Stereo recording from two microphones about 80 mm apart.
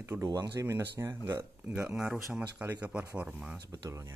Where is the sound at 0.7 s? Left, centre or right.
Right.